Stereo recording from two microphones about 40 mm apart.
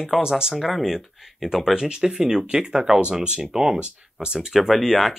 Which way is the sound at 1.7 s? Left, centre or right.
Centre.